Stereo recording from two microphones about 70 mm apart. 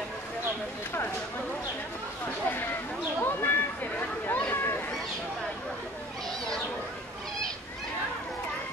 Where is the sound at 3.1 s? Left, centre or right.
Left.